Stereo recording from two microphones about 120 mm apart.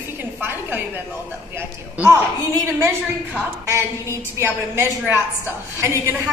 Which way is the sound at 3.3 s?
20° right (ahead or behind).